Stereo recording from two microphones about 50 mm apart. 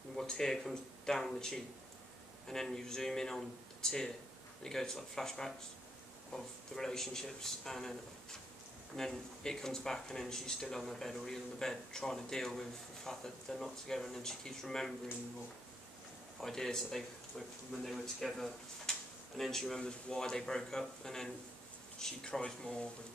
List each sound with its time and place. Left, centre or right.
0.1 s speech: centre
16.3 s speech: centre